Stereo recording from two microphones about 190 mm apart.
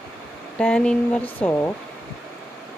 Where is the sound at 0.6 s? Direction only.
5° left (ahead or behind).